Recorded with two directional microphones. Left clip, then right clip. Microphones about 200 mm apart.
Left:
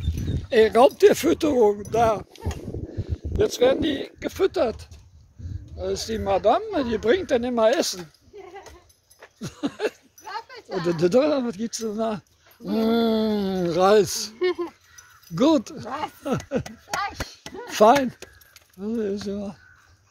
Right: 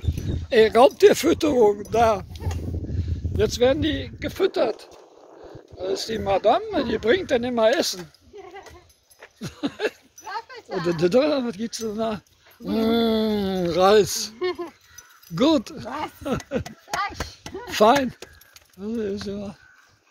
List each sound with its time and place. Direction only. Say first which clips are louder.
0.5 s speech: right 1 dB; centre (ahead or behind)
9.2 s a sound: even; 5° left (ahead or behind)
10.7 s speech: even; centre (ahead or behind)
14.4 s a sound: left 4 dB; 30° left (ahead or behind)
15.3 s speech: even; centre (ahead or behind)
17.6 s speech: left 1 dB; 5° left (ahead or behind)